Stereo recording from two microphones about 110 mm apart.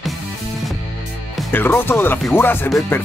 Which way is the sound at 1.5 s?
20° left (ahead or behind).